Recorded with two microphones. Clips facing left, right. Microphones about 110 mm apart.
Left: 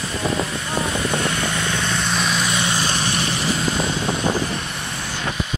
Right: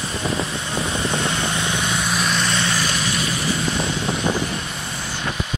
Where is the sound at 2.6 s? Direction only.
25° left (ahead or behind).